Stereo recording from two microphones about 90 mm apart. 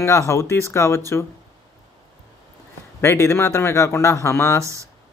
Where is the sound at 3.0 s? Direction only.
30° left (ahead or behind).